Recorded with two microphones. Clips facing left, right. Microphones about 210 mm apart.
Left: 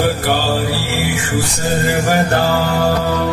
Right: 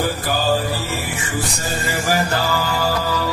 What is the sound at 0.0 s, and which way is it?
Mantra, 70° left (ahead or behind).